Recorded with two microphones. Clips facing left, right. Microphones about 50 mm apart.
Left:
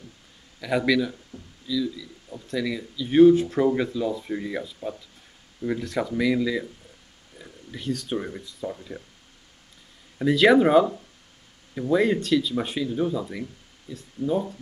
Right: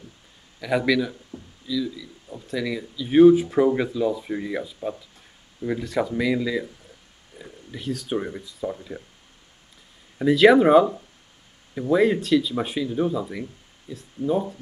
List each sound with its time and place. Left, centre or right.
0.6 s speech: centre
1.3 s a sound: right
1.7 s speech: centre
10.1 s speech: centre
11.9 s speech: centre